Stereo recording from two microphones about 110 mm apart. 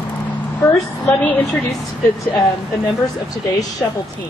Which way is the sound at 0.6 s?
20° left (ahead or behind).